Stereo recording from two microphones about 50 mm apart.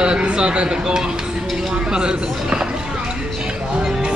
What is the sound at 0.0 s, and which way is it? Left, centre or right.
Speech, centre.